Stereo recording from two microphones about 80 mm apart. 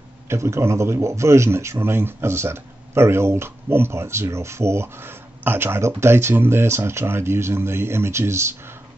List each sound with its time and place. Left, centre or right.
0.3 s a man's voice: right